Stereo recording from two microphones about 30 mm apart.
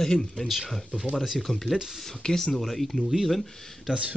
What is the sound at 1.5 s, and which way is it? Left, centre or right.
Speech, centre.